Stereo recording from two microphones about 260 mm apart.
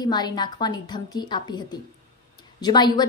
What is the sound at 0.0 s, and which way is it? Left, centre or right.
A woman's voice, centre.